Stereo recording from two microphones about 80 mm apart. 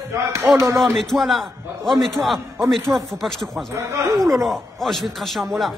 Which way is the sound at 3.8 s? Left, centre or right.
Right.